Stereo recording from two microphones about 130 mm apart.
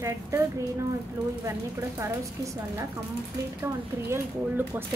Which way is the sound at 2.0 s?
20° right (ahead or behind).